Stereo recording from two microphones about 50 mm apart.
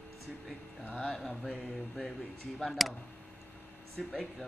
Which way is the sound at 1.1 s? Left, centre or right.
Centre.